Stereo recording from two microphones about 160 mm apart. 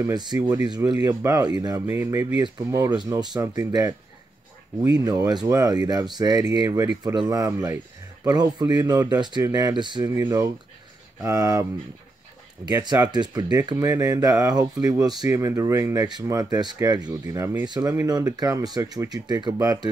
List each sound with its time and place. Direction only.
0.0 s speech: 25° right (ahead or behind)
5.0 s speech: 25° right (ahead or behind)
12.8 s speech: 25° right (ahead or behind)